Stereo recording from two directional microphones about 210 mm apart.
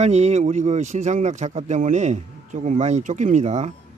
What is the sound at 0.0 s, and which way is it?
Speech, 30° right (ahead or behind).